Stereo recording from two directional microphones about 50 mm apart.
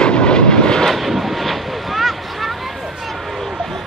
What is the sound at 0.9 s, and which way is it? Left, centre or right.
Vehicle, centre.